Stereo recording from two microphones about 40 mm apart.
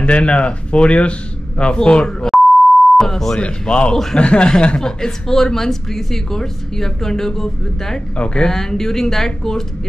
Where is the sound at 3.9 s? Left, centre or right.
Centre.